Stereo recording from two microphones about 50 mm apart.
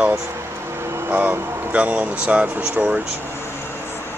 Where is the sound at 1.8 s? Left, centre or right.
Right.